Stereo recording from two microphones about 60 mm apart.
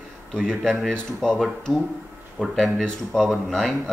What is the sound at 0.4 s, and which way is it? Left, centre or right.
Speech, centre.